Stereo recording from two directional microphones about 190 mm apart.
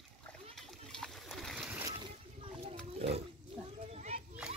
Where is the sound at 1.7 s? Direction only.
10° right (ahead or behind).